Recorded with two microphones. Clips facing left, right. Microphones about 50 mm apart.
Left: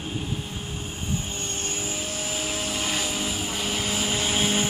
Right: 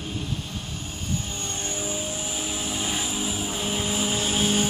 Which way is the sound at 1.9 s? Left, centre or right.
Left.